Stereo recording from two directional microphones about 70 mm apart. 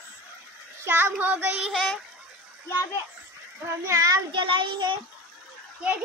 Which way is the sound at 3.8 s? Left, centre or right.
Right.